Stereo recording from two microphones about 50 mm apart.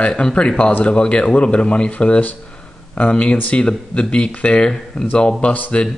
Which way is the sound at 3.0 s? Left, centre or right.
Left.